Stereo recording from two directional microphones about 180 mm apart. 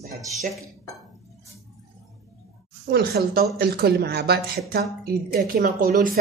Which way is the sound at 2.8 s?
60° right (ahead or behind).